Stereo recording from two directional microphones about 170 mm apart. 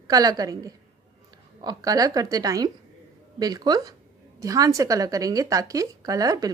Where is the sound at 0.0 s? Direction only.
20° right (ahead or behind).